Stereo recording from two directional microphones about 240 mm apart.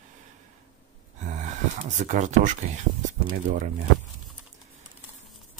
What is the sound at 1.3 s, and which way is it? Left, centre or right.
Speech, right.